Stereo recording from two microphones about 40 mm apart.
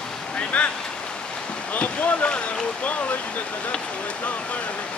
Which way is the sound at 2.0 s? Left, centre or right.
Left.